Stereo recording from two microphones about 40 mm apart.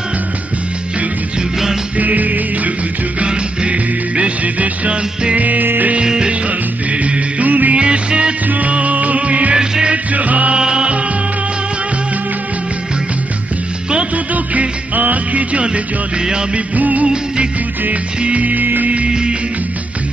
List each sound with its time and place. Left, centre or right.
2.0 s music: right
3.2 s music: right
6.0 s music: centre
6.9 s music: right
7.7 s music: right
8.5 s music: right
9.6 s music: right
10.1 s music: right
10.6 s music: right
14.1 s music: right
15.6 s music: right
16.7 s music: right
18.2 s music: right
19.0 s music: right